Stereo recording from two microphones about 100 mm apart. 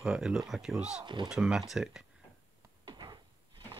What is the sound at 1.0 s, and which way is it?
Speech, 50° right (ahead or behind).